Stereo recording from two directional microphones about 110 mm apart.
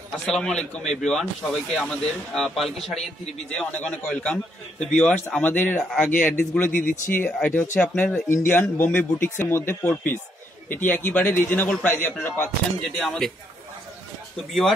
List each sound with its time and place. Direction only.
0.1 s speech: 5° left (ahead or behind)
12.9 s speech: 5° left (ahead or behind)
14.3 s speech: centre (ahead or behind)